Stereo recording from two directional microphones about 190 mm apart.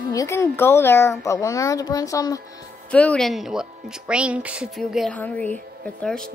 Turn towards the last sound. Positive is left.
turn(degrees=5)  # may be behind; listen again after turning